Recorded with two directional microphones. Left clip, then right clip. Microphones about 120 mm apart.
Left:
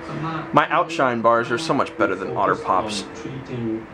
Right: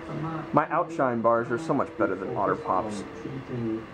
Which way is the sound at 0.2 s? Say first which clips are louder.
Left 7 dB; 20° left (ahead or behind).